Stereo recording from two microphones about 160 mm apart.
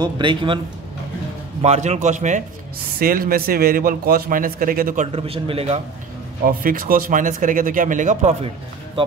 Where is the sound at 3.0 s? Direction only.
65° right (ahead or behind).